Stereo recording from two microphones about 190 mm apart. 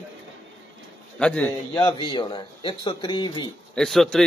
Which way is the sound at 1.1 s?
5° left (ahead or behind).